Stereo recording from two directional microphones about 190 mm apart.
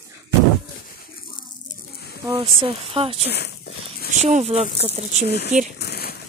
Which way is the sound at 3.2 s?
60° left (ahead or behind).